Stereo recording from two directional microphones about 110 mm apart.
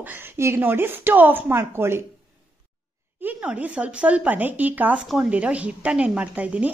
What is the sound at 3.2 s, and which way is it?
A woman's voice, 10° right (ahead or behind).